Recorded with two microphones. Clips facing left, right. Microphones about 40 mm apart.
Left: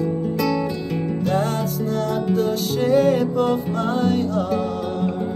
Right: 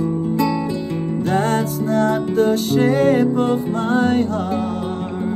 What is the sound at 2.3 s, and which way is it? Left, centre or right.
Music, right.